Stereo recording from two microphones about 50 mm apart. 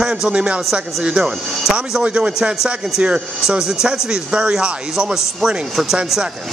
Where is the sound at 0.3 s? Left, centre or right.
Right.